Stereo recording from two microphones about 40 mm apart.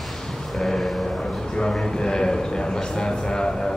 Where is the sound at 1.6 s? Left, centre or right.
Centre.